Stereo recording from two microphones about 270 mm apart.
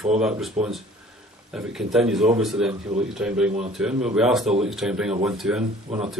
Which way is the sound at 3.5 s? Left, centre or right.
Right.